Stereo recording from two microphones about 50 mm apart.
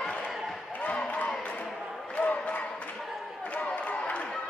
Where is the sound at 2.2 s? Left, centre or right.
Left.